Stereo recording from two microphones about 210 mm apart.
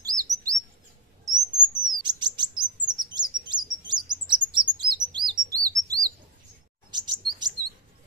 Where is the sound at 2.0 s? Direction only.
20° right (ahead or behind).